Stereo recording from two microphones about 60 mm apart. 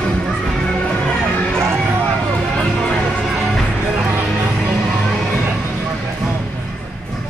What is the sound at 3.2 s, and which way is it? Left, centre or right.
Music, centre.